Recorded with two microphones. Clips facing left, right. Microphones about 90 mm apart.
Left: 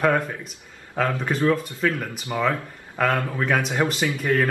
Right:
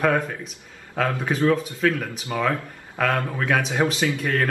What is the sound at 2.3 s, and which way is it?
Speech, 10° left (ahead or behind).